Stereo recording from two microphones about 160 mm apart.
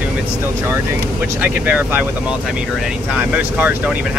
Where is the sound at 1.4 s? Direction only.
10° right (ahead or behind).